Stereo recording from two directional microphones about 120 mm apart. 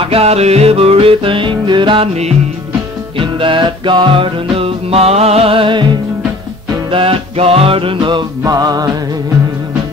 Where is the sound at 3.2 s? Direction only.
45° right (ahead or behind).